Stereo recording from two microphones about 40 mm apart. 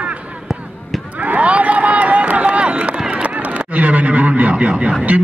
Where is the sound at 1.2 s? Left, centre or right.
Right.